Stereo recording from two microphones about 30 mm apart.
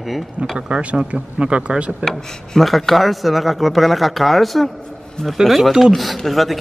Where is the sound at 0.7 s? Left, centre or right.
Right.